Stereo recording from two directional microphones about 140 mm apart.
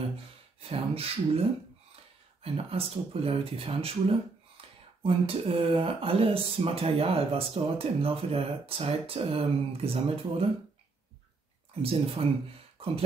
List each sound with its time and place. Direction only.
0.6 s speech: 45° right (ahead or behind)
2.4 s speech: 45° right (ahead or behind)
11.8 s speech: 45° right (ahead or behind)